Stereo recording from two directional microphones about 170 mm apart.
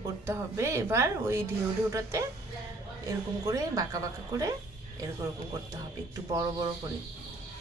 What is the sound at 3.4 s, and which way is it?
Speech, 20° right (ahead or behind).